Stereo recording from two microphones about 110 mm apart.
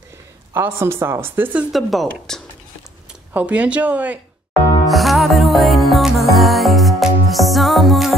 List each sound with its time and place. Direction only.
0.5 s a woman's voice: 20° right (ahead or behind)
1.7 s speech: centre (ahead or behind)
3.1 s speech: 15° right (ahead or behind)
4.8 s music: centre (ahead or behind)